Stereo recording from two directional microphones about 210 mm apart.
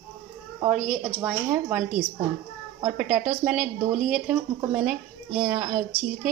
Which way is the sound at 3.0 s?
5° right (ahead or behind).